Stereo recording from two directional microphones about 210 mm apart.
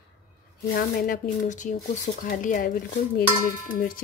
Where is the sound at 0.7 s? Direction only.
45° left (ahead or behind).